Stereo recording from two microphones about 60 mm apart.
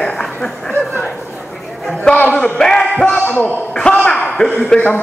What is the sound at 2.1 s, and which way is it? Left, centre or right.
Speech, left.